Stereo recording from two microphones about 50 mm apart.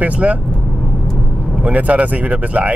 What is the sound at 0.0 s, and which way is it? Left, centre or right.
Speech, right.